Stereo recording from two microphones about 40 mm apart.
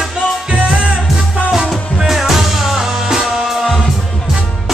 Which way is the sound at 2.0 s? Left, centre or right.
Centre.